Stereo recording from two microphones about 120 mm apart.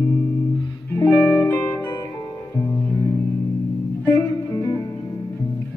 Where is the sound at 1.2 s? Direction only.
25° left (ahead or behind).